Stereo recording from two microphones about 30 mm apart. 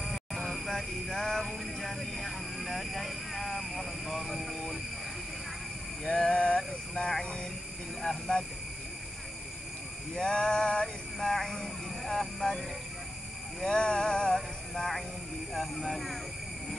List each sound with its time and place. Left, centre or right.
0.0 s vehicle: centre
0.7 s music: centre
1.4 s vehicle: centre
6.0 s a sound: left
6.9 s vehicle: left
10.1 s a sound: left
11.1 s vehicle: centre
13.7 s a sound: left
14.3 s music: centre
15.5 s speech: centre